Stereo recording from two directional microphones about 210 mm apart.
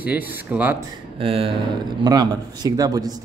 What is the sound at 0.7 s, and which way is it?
Speech, 25° right (ahead or behind).